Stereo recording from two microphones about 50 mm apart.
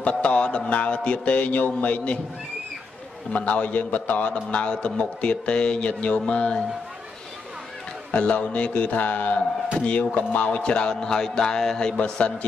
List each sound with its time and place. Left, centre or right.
0.0 s a man's voice: left
3.3 s a man's voice: left
8.1 s a man's voice: left
9.8 s music: left
12.0 s a man's voice: left